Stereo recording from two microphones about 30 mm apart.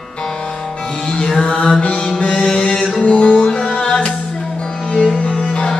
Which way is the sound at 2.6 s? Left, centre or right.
Left.